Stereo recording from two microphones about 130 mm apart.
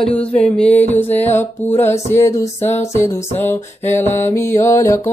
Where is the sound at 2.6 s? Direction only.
60° left (ahead or behind).